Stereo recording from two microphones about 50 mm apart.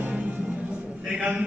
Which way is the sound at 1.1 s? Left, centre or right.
Right.